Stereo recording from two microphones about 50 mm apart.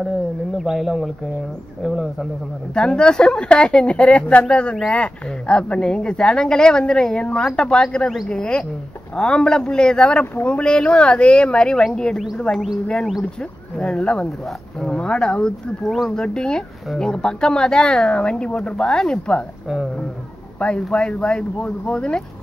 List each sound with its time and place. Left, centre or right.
0.6 s speech: centre
2.7 s a woman's voice: centre
13.7 s a woman's voice: centre
15.8 s speech: centre
16.2 s a woman's voice: centre
20.5 s speech: left